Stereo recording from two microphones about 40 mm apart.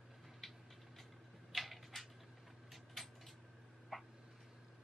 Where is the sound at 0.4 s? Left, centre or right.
Centre.